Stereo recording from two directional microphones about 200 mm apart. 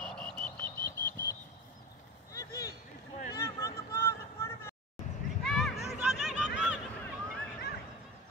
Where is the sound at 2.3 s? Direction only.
15° left (ahead or behind).